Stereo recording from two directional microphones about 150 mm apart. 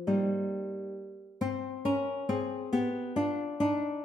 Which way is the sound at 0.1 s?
Centre (ahead or behind).